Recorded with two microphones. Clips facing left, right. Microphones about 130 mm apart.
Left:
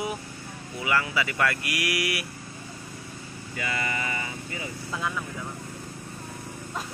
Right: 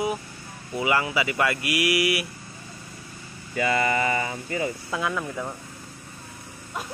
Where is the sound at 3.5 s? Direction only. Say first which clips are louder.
Right 8 dB; 40° right (ahead or behind).